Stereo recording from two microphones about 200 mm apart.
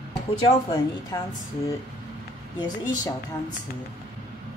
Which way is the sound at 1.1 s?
20° left (ahead or behind).